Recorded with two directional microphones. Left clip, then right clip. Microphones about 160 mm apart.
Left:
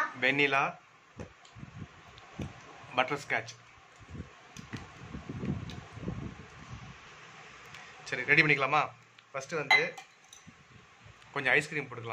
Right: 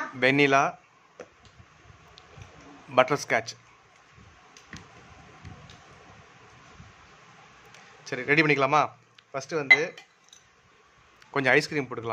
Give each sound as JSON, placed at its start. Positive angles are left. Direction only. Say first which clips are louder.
{"t": 0.2, "sound": "a man's voice", "louder": "right 7 dB", "side_deg": -90}
{"t": 2.9, "sound": "a man's voice", "louder": "right 8 dB", "side_deg": -90}
{"t": 8.0, "sound": "speech", "louder": "right 2 dB", "side_deg": -65}
{"t": 11.3, "sound": "a man's voice", "louder": "right 5 dB", "side_deg": -90}